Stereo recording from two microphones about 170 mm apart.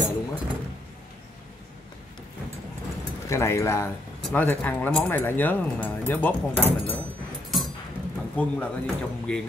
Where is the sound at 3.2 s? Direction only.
15° left (ahead or behind).